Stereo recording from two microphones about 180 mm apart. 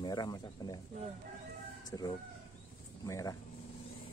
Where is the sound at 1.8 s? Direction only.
20° left (ahead or behind).